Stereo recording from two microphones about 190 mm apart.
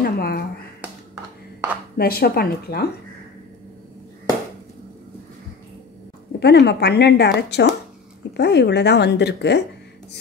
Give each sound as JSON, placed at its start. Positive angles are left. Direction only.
{"t": 0.0, "sound": "a sound", "side_deg": 55}
{"t": 2.0, "sound": "a woman's voice", "side_deg": 55}
{"t": 6.4, "sound": "a woman's voice", "side_deg": 60}